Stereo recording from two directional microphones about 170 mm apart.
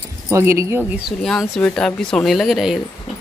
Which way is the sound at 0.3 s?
15° right (ahead or behind).